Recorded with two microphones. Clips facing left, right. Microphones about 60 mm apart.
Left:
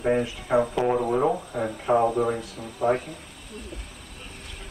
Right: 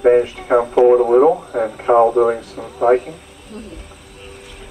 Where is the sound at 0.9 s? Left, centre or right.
Right.